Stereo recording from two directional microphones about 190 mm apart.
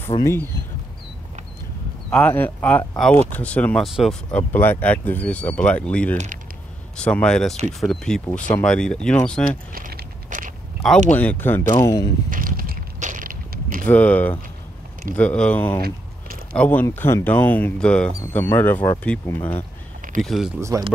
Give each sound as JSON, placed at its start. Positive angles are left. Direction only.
{"t": 0.2, "sound": "speech", "side_deg": 15}
{"t": 2.0, "sound": "speech", "side_deg": 5}
{"t": 9.7, "sound": "biting", "side_deg": -50}
{"t": 11.1, "sound": "speech", "side_deg": 10}
{"t": 12.3, "sound": "a sound", "side_deg": -45}
{"t": 13.8, "sound": "speech", "side_deg": 10}
{"t": 20.2, "sound": "speech", "side_deg": 0}